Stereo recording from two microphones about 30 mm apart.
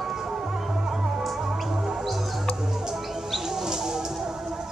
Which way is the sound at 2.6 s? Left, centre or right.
Centre.